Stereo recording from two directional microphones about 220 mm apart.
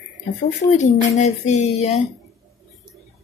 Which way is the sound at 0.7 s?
30° left (ahead or behind).